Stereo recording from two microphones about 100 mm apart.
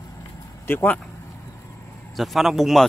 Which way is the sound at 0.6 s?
20° left (ahead or behind).